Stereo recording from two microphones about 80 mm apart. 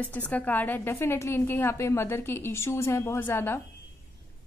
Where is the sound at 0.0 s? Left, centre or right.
Centre.